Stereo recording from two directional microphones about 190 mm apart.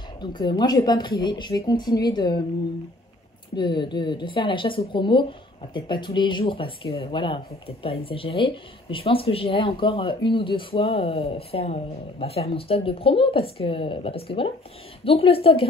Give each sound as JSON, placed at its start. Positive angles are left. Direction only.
{"t": 0.2, "sound": "speech", "side_deg": 25}
{"t": 3.5, "sound": "speech", "side_deg": 25}